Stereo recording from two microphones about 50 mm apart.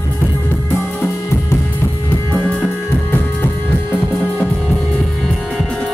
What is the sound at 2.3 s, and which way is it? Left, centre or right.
Music, left.